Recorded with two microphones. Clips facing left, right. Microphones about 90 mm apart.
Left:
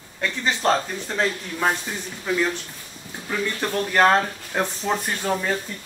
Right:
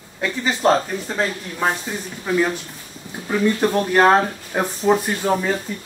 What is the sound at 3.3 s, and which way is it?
Speech, 15° right (ahead or behind).